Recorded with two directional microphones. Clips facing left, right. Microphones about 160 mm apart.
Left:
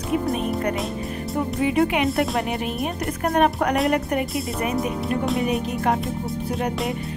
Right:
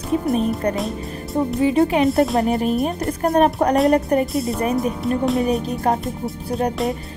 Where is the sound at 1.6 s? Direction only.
30° right (ahead or behind).